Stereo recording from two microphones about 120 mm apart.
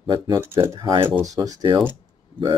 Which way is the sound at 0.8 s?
45° right (ahead or behind).